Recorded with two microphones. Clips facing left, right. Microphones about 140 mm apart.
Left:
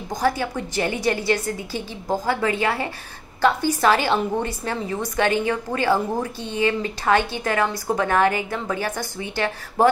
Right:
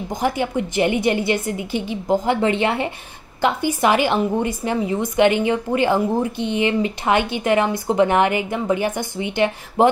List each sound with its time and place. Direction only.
0.1 s a woman's voice: 20° right (ahead or behind)